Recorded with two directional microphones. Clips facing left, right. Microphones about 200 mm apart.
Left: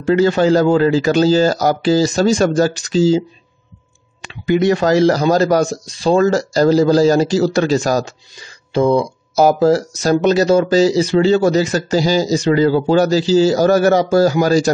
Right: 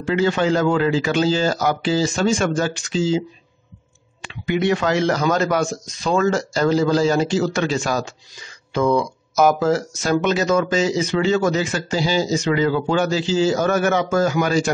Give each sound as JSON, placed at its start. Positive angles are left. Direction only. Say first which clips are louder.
{"t": 0.0, "sound": "speech", "louder": "left 6 dB", "side_deg": 40}